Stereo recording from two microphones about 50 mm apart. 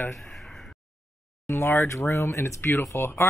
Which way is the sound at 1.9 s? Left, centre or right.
Left.